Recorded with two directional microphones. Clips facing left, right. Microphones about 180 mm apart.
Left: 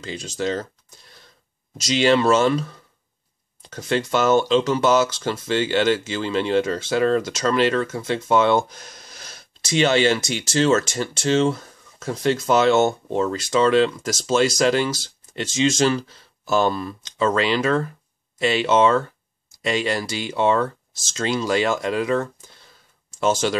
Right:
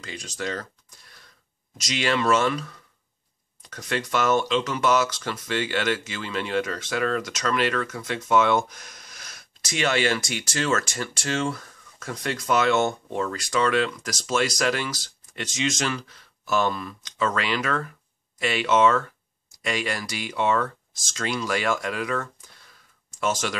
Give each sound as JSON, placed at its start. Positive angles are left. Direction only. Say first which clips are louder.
{"t": 0.0, "sound": "speech", "louder": "left 6 dB", "side_deg": 30}